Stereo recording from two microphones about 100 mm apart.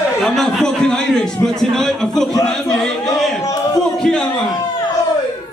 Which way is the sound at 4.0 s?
5° left (ahead or behind).